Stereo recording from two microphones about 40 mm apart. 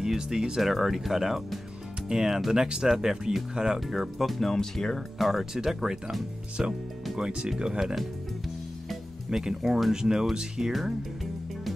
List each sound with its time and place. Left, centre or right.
0.0 s speech: centre
0.6 s speech: centre
3.8 s speech: centre
5.3 s speech: centre
7.8 s speech: centre
9.4 s speech: centre